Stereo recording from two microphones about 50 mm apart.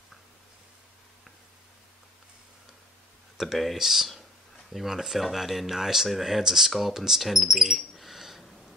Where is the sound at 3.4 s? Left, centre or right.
Centre.